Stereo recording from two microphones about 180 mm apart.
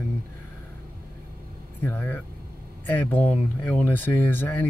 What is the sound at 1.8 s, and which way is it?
Speech, 10° left (ahead or behind).